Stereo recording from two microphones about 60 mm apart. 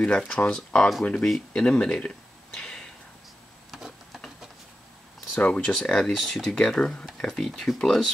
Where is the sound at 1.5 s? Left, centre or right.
Centre.